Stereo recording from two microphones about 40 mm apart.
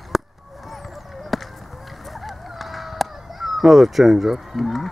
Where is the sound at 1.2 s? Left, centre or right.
Centre.